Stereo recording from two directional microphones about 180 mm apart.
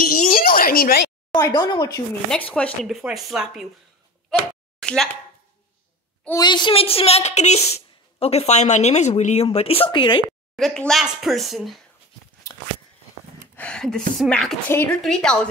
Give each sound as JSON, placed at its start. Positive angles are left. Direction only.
{"t": 0.0, "sound": "a sound", "side_deg": 50}
{"t": 1.3, "sound": "speech", "side_deg": 25}
{"t": 2.3, "sound": "speech", "side_deg": 5}
{"t": 4.7, "sound": "a sound", "side_deg": 5}
{"t": 6.4, "sound": "a woman's voice", "side_deg": 25}
{"t": 10.5, "sound": "speech", "side_deg": 0}
{"t": 13.6, "sound": "speech", "side_deg": 5}
{"t": 14.7, "sound": "a woman's voice", "side_deg": 15}
{"t": 15.0, "sound": "speech", "side_deg": 0}